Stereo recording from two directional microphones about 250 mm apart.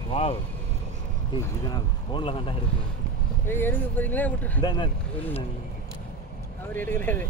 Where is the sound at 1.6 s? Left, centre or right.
Centre.